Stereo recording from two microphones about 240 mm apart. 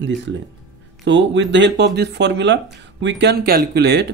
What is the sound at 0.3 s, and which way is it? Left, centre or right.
Speech, right.